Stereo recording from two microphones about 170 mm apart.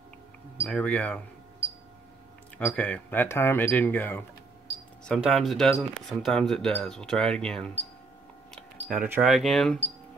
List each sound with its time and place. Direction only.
0.7 s speech: 5° left (ahead or behind)
2.5 s speech: 10° left (ahead or behind)
5.0 s speech: centre (ahead or behind)
8.8 s speech: 5° right (ahead or behind)